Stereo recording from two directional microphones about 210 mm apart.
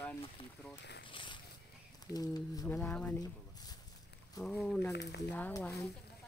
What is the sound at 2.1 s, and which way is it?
Speech, 10° left (ahead or behind).